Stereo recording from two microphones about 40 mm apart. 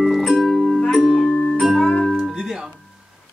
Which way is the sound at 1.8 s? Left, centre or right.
Centre.